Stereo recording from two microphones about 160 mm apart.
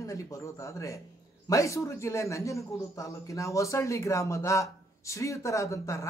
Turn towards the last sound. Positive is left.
turn(degrees=20)  # may be behind; listen again after turning